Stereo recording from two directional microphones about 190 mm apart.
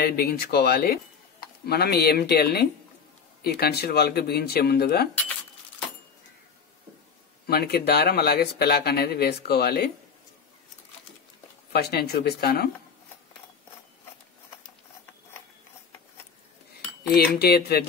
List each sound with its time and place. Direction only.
0.0 s speech: 55° left (ahead or behind)
7.4 s speech: 55° left (ahead or behind)
11.7 s speech: 55° left (ahead or behind)
17.1 s speech: 55° left (ahead or behind)